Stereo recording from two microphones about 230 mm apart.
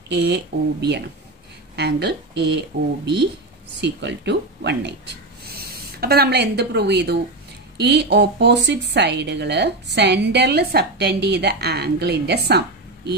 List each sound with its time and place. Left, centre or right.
0.1 s a woman's voice: right
3.8 s a woman's voice: right